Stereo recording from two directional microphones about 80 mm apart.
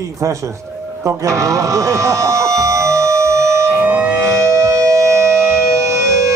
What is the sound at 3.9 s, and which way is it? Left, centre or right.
Civil defense siren, centre.